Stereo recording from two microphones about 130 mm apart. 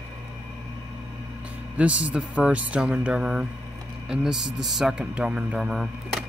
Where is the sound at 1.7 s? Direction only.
10° right (ahead or behind).